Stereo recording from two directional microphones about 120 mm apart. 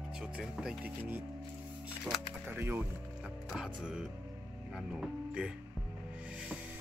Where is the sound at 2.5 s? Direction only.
15° right (ahead or behind).